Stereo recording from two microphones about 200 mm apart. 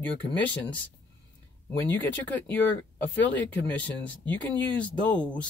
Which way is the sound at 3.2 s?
10° left (ahead or behind).